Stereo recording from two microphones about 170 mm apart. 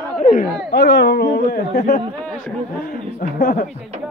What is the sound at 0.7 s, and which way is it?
Speech, 90° left.